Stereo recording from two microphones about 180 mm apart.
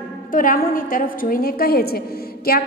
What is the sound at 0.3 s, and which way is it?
A woman's voice, 50° left (ahead or behind).